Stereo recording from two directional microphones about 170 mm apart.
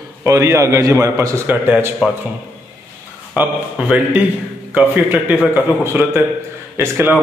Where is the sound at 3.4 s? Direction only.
10° right (ahead or behind).